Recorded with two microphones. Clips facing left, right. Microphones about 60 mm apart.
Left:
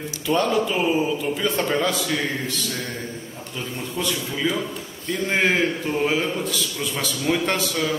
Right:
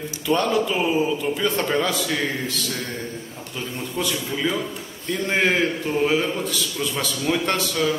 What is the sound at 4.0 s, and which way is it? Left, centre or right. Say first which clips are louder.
A man's voice: even; centre.